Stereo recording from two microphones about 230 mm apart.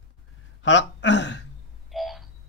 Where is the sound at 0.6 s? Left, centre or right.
Left.